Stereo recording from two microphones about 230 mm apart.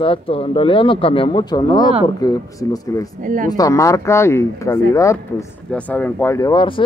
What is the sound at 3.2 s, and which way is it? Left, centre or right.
Speech, right.